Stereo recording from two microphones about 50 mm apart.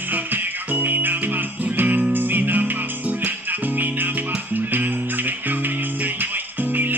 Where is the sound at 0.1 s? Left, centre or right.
Right.